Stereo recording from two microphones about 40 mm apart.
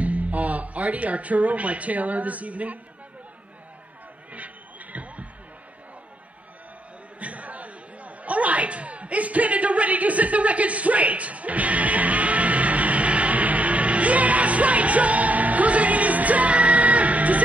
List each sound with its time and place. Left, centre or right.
0.0 s speech: right
4.3 s a sound: right
7.2 s chatter: right